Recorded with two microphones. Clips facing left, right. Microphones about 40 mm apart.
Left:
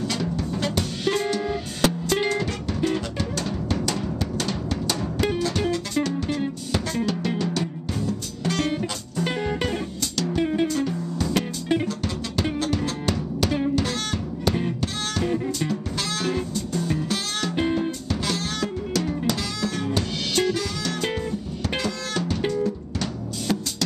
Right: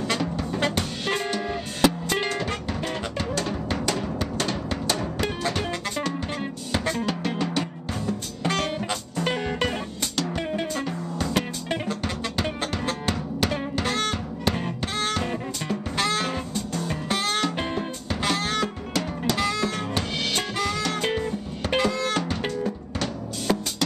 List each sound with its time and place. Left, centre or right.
0.1 s music: right
2.1 s music: centre
10.7 s music: centre
12.5 s music: centre
17.1 s music: right
17.6 s music: centre
18.2 s music: right
19.3 s music: right
21.8 s drum: right